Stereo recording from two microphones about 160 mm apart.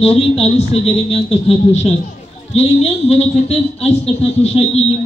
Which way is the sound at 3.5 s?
40° left (ahead or behind).